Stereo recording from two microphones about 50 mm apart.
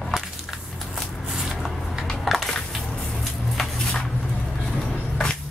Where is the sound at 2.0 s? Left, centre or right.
Centre.